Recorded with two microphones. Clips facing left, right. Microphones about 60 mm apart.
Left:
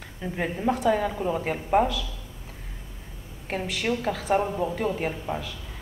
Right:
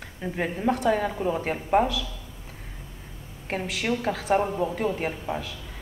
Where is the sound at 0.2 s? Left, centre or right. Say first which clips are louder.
Right 1 dB; centre.